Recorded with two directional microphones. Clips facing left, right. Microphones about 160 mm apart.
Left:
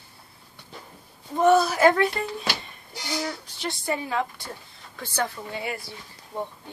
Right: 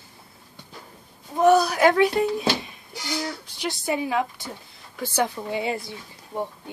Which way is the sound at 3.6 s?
15° right (ahead or behind).